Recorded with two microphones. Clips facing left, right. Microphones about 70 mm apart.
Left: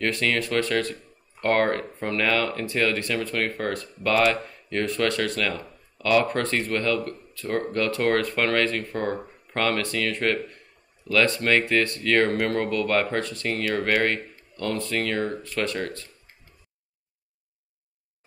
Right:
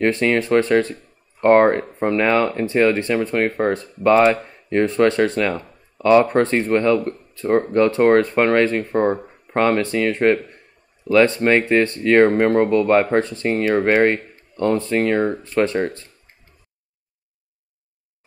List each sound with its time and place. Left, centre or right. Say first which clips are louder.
0.0 s speech: right 7 dB; right